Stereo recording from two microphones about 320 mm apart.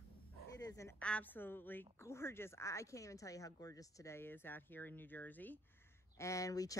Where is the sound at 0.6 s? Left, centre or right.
Centre.